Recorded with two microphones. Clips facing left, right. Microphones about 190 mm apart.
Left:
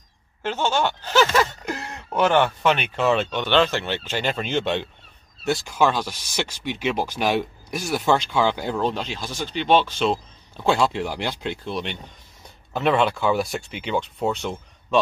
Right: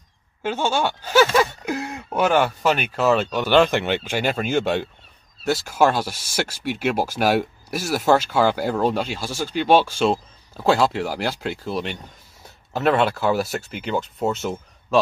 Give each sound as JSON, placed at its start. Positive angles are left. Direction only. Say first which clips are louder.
{"t": 0.4, "sound": "speech", "louder": "right 1 dB", "side_deg": -10}